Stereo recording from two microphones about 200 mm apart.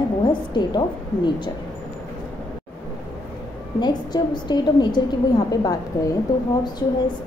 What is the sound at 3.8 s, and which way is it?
A woman's voice, 20° left (ahead or behind).